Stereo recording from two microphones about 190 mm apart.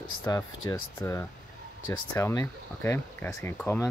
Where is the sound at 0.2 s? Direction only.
15° left (ahead or behind).